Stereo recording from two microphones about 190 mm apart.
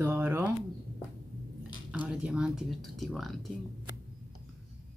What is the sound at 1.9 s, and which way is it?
A woman's voice, 5° right (ahead or behind).